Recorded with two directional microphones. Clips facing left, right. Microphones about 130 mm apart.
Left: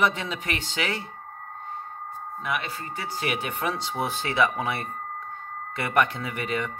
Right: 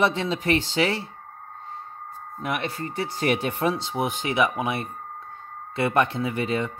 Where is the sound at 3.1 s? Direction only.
35° right (ahead or behind).